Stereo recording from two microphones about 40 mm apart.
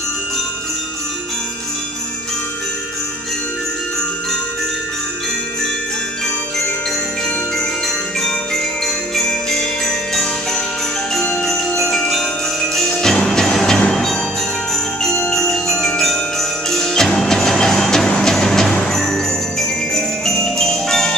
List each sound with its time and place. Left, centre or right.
8.8 s jingle bell: centre
11.9 s tubular bells: centre
13.0 s music: centre
15.0 s jingle bell: centre
16.0 s music: centre
18.0 s music: left
18.9 s jingle bell: centre